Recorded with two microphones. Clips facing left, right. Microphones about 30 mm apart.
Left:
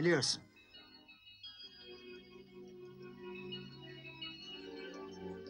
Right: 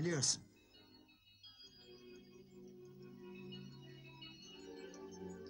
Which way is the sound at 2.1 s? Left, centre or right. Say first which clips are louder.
Left 5 dB; left.